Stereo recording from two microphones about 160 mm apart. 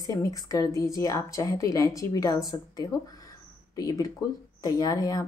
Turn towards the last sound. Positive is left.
turn(degrees=20)  # may be behind; listen again after turning